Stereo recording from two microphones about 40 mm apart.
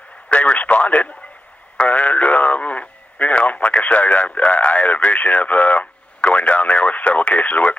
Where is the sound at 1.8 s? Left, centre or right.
Left.